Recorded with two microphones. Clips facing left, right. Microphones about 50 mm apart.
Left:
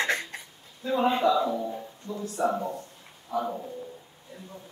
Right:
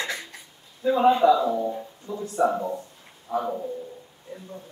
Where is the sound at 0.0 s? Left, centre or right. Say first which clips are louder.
Left 4 dB; left.